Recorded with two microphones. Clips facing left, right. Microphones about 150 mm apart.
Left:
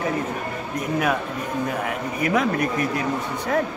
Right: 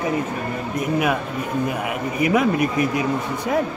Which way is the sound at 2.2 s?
10° right (ahead or behind).